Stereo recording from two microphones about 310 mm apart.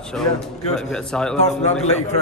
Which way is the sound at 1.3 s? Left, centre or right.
Left.